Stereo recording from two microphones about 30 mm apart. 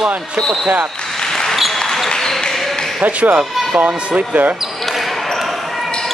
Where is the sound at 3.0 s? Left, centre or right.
Right.